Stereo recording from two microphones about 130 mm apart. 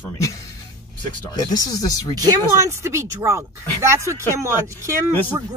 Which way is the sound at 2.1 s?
30° right (ahead or behind).